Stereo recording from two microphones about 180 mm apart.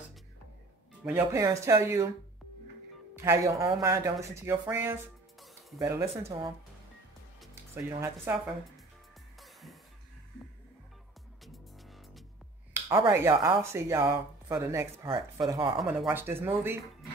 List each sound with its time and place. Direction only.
1.0 s speech: 15° right (ahead or behind)
3.2 s speech: 15° right (ahead or behind)
7.7 s speech: 15° right (ahead or behind)
9.4 s music: centre (ahead or behind)
13.1 s speech: 15° right (ahead or behind)
15.8 s speech: centre (ahead or behind)
16.1 s speech: 10° right (ahead or behind)